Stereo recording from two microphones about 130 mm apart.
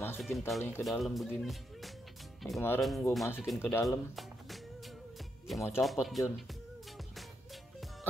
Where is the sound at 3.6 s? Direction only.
20° left (ahead or behind).